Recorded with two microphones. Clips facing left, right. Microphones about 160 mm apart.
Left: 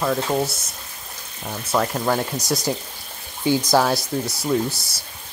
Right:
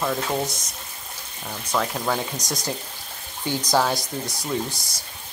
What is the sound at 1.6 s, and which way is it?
Speech, 5° left (ahead or behind).